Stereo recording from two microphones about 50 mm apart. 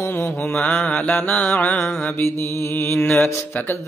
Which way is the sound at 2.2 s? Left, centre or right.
Left.